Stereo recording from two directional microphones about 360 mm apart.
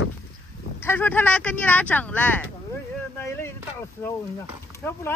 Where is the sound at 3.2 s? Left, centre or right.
Centre.